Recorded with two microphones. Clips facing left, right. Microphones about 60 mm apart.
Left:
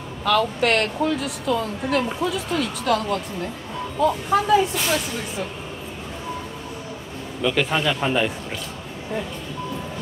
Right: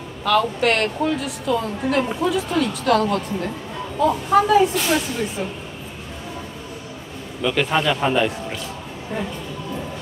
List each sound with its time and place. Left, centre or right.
0.2 s a woman's voice: centre
7.4 s a woman's voice: centre